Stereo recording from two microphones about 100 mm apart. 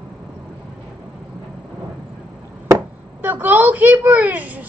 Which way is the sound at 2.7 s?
20° right (ahead or behind).